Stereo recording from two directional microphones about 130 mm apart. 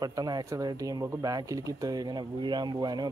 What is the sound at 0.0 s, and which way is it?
Speech, 30° right (ahead or behind).